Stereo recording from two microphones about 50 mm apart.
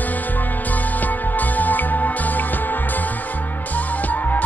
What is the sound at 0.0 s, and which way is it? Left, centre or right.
Music, left.